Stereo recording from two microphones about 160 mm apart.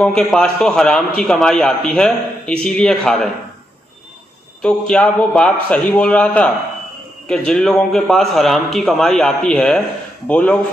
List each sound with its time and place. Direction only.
0.0 s a man's voice: 5° left (ahead or behind)
4.6 s a man's voice: 5° left (ahead or behind)